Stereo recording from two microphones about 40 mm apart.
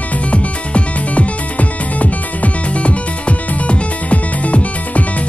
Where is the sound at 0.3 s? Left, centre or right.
Left.